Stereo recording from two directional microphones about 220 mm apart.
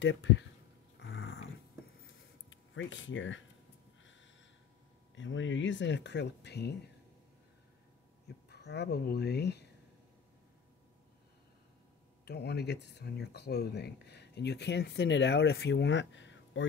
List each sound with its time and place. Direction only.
0.0 s speech: 55° left (ahead or behind)
0.9 s dog: 50° left (ahead or behind)
2.5 s speech: 60° left (ahead or behind)
4.0 s a sound: 55° left (ahead or behind)
5.1 s speech: 55° left (ahead or behind)
8.5 s speech: 50° left (ahead or behind)
12.3 s speech: 50° left (ahead or behind)